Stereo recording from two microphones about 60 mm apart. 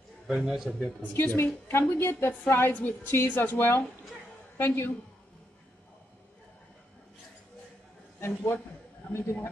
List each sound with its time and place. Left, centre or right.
0.3 s a man's voice: centre
0.7 s a man's voice: centre
1.1 s a woman's voice: left
9.1 s a woman's voice: left